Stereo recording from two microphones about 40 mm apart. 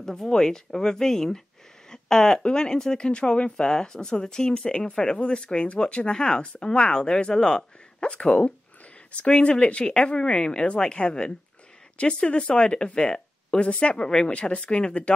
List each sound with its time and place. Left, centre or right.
0.0 s speech: centre